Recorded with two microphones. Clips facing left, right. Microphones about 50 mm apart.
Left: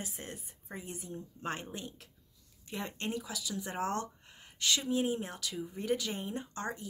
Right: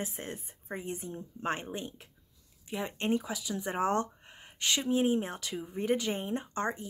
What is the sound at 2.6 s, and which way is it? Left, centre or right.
Speech, centre.